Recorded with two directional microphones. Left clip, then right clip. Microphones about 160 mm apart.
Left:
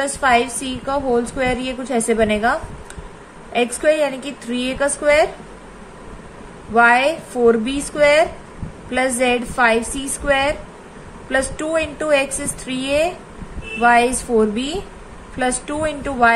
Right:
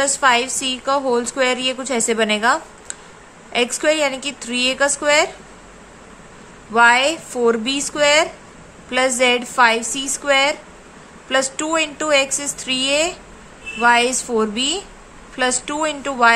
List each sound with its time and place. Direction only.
0.0 s a woman's voice: 30° right (ahead or behind)
6.7 s a woman's voice: 30° right (ahead or behind)